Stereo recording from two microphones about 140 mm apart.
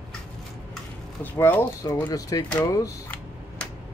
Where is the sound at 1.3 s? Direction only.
15° left (ahead or behind).